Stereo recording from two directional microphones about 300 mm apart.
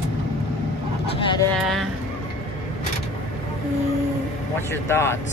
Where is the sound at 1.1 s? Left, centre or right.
Centre.